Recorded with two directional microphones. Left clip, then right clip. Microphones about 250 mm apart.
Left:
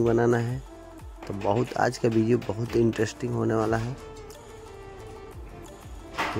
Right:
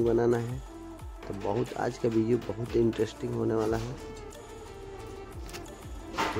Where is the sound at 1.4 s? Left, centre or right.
Left.